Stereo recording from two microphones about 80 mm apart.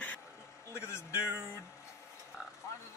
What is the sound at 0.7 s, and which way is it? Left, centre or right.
Speech, left.